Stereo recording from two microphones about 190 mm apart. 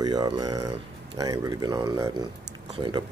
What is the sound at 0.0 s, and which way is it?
Speech, 20° right (ahead or behind).